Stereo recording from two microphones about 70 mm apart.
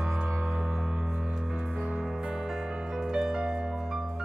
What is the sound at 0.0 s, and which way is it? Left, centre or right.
Music, centre.